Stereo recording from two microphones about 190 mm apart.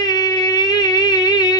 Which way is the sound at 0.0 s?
20° left (ahead or behind).